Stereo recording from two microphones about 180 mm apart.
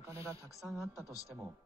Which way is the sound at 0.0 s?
15° right (ahead or behind).